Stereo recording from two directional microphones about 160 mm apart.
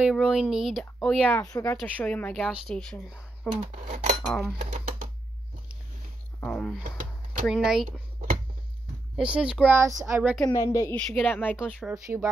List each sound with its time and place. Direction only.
0.0 s speech: centre (ahead or behind)
3.8 s speech: 45° right (ahead or behind)
4.3 s speech: centre (ahead or behind)
4.6 s speech: 50° right (ahead or behind)
6.4 s speech: 5° left (ahead or behind)
9.1 s speech: 5° right (ahead or behind)
10.5 s a woman's voice: 20° left (ahead or behind)
11.0 s speech: 5° left (ahead or behind)
11.8 s speech: 10° right (ahead or behind)